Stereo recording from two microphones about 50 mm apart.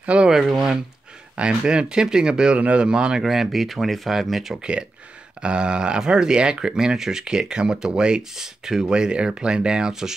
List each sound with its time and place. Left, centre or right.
0.0 s a sound: right
0.3 s speech: centre
1.3 s speech: centre
3.3 s speech: centre
4.6 s speech: centre